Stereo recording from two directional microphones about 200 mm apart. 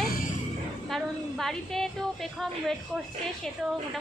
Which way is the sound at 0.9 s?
Centre (ahead or behind).